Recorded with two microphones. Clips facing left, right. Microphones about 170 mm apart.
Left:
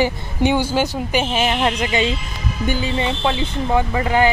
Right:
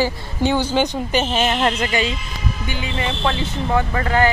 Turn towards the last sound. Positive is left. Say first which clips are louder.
# left 1 dB
turn(degrees=15)  # may be behind; listen again after turning